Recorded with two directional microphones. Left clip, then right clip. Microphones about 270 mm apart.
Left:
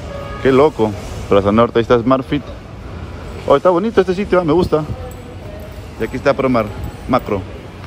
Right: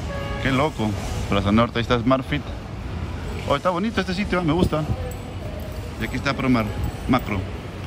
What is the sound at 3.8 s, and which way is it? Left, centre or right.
A man's voice, centre.